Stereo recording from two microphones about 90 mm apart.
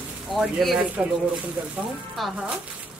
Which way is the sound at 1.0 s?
10° right (ahead or behind).